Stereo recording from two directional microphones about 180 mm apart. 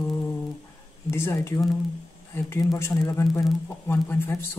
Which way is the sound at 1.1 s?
15° left (ahead or behind).